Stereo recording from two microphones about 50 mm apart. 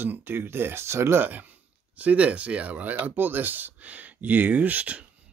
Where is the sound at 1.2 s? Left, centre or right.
Right.